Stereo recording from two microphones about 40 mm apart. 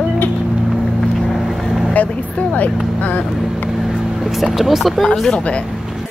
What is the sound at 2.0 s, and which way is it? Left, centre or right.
Speech, left.